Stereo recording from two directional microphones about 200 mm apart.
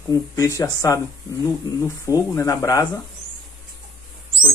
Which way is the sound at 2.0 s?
15° left (ahead or behind).